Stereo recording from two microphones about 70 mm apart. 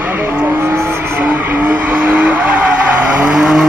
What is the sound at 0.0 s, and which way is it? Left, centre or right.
Vehicle, right.